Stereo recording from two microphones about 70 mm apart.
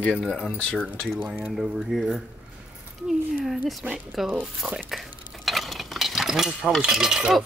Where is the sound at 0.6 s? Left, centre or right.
Centre.